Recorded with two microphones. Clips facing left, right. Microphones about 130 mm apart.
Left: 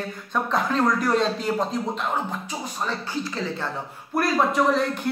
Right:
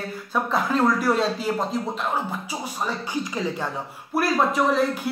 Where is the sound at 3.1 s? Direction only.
15° right (ahead or behind).